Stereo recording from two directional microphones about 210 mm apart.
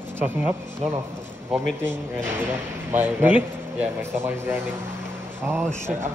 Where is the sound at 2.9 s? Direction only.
10° right (ahead or behind).